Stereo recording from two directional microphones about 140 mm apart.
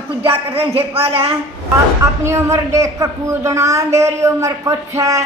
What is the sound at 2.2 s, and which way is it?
A man's voice, 20° right (ahead or behind).